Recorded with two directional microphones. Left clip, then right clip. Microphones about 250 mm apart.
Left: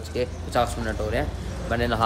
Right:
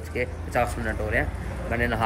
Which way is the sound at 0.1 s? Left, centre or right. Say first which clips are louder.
Left 1 dB; centre.